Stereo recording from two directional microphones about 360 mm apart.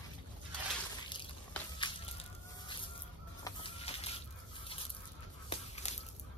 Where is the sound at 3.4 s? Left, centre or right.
Centre.